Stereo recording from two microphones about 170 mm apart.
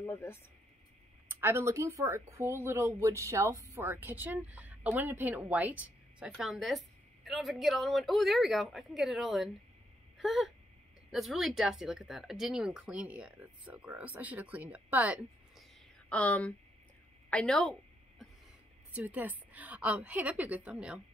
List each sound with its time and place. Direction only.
0.0 s speech: 15° left (ahead or behind)
1.3 s speech: 15° right (ahead or behind)
10.1 s a sound: centre (ahead or behind)
11.1 s speech: centre (ahead or behind)
16.1 s speech: 10° left (ahead or behind)
18.9 s speech: 10° right (ahead or behind)